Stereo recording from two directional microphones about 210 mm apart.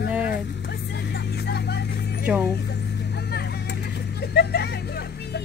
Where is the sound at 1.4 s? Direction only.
50° left (ahead or behind).